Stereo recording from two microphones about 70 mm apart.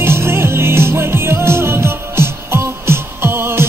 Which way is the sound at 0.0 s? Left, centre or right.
Right.